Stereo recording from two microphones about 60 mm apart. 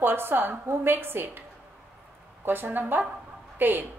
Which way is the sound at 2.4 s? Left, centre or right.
Right.